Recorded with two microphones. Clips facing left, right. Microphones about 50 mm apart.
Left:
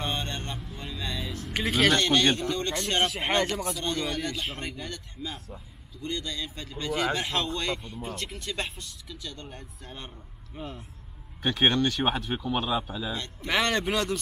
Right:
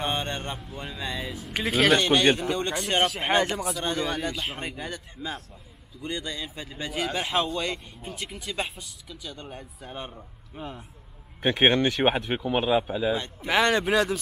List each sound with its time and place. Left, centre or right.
0.0 s a sound: right
0.6 s speech: centre
11.4 s speech: right
13.5 s speech: centre